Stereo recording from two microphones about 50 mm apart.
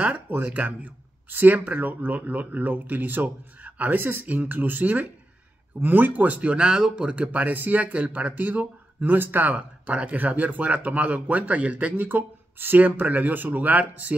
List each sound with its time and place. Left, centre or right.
0.4 s speech: right
4.0 s speech: right; by 7.2 s centre
7.3 s speech: right